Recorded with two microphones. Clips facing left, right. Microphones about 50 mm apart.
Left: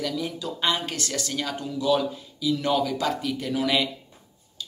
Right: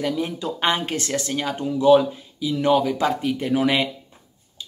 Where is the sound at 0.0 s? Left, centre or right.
Right.